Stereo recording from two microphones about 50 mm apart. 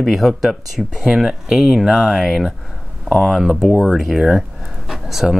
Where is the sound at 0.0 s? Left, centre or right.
Centre.